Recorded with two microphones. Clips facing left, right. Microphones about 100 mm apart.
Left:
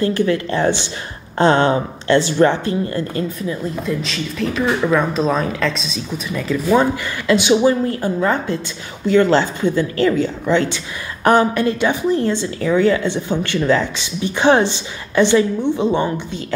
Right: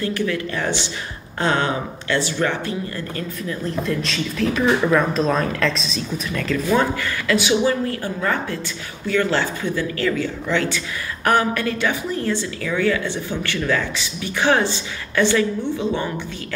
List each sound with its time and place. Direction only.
0.0 s speech: 30° left (ahead or behind)
3.8 s speech: 5° left (ahead or behind)
6.3 s a woman's voice: 15° left (ahead or behind)